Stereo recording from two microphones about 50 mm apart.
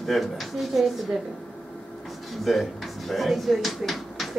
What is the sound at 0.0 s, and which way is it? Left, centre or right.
Speech, centre.